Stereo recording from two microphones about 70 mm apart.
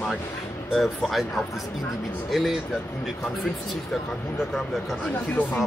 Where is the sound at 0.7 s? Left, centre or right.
Centre.